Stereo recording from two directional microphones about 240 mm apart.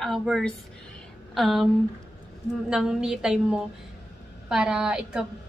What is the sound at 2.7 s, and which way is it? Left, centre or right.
A woman's voice, centre.